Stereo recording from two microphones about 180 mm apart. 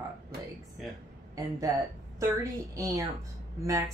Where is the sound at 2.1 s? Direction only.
20° right (ahead or behind).